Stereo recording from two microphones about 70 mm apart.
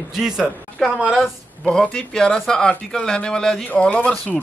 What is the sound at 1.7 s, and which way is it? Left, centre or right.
Speech, centre.